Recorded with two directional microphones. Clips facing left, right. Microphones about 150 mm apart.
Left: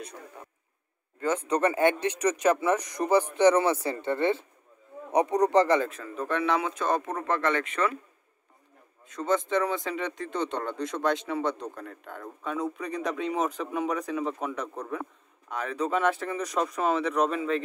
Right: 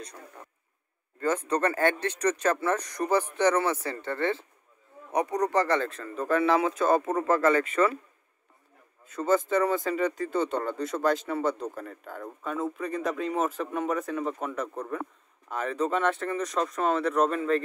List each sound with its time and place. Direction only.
1.5 s speech: 15° left (ahead or behind); by 7.9 s 5° right (ahead or behind)
9.0 s speech: 5° right (ahead or behind)